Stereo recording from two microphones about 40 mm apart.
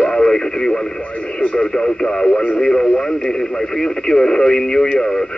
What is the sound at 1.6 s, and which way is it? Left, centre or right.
Speech, left.